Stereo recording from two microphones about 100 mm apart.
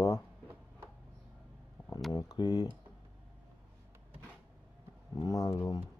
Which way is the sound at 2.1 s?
40° left (ahead or behind).